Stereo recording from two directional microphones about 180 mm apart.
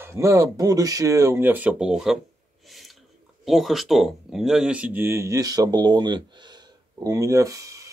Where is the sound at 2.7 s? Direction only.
Centre (ahead or behind).